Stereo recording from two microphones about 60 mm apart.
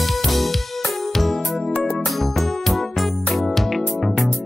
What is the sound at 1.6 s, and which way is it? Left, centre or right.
Music, centre.